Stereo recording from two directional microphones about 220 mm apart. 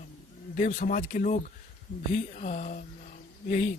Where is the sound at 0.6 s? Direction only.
35° left (ahead or behind).